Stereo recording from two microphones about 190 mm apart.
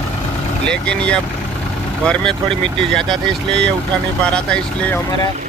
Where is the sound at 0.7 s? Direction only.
5° left (ahead or behind).